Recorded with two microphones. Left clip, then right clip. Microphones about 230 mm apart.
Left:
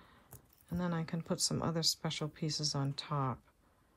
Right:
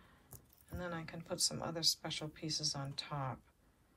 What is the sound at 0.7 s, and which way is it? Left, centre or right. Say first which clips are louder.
Speech: left 4 dB; left.